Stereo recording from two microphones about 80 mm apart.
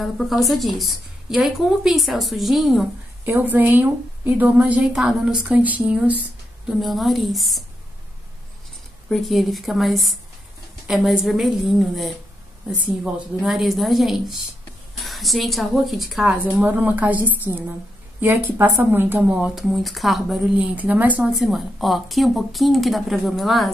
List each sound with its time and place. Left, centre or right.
0.0 s a woman's voice: centre
3.3 s a woman's voice: right
4.8 s a woman's voice: centre
6.7 s a woman's voice: centre
9.1 s a woman's voice: centre
12.8 s a woman's voice: centre
16.6 s a woman's voice: right
19.3 s a woman's voice: centre
19.7 s a woman's voice: centre
20.5 s a woman's voice: centre
21.4 s a woman's voice: centre